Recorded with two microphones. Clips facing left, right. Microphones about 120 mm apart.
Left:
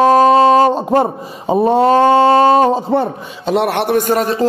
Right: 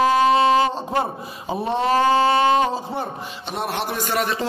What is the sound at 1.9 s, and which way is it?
Speech, 30° left (ahead or behind).